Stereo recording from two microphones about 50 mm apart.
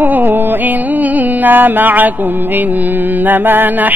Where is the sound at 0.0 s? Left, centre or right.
Right.